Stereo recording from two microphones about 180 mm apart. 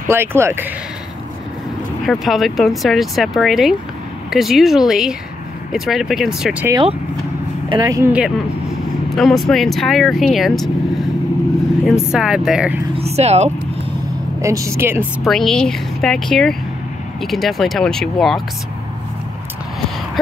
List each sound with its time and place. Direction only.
0.1 s a woman's voice: 15° right (ahead or behind)
2.0 s speech: centre (ahead or behind)
7.8 s a woman's voice: 15° right (ahead or behind)
9.1 s speech: centre (ahead or behind)
11.8 s speech: centre (ahead or behind)
12.9 s speech: 35° right (ahead or behind)
14.4 s a woman's voice: 15° right (ahead or behind)
15.2 s speech: centre (ahead or behind)